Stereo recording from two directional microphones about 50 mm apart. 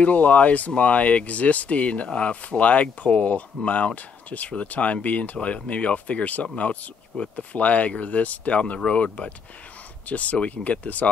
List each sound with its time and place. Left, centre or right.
0.0 s speech: left